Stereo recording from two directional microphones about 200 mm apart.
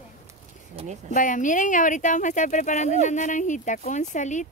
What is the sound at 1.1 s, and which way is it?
Speech, 40° left (ahead or behind).